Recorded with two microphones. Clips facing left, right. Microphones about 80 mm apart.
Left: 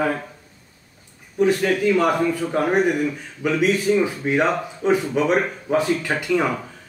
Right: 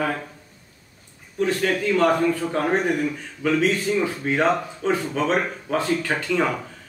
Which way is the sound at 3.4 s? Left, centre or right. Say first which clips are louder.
Left 2 dB; centre.